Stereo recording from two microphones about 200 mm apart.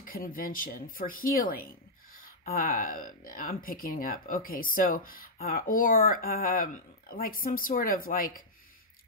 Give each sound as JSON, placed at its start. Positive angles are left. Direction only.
{"t": 0.0, "sound": "speech", "side_deg": 45}